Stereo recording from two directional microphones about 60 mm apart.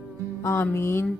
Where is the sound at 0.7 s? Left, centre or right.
Left.